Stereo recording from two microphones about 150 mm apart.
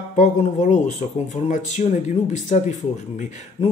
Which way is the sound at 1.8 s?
55° left (ahead or behind).